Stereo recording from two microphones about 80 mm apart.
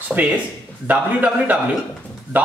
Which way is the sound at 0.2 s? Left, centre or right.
Centre.